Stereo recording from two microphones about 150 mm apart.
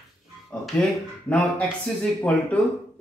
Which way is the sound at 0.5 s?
5° left (ahead or behind).